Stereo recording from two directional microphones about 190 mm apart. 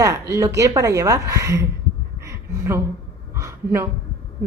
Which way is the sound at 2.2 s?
10° right (ahead or behind).